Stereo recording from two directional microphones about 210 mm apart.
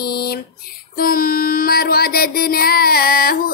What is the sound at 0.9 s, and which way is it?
Music, 45° left (ahead or behind).